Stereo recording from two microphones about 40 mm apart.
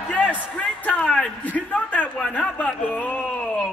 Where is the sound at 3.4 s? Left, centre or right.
Left.